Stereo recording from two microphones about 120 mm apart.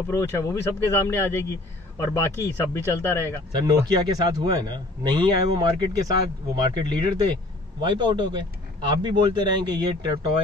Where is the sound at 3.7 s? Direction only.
35° right (ahead or behind).